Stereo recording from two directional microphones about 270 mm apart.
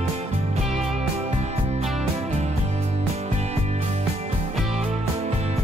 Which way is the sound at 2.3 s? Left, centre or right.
Right.